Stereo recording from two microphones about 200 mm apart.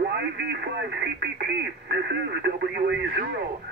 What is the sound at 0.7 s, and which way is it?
Speech, 60° right (ahead or behind).